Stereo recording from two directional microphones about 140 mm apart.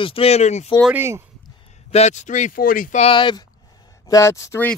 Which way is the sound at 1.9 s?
50° left (ahead or behind).